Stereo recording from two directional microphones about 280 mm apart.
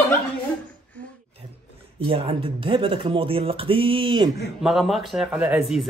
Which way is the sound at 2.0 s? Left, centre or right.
Centre.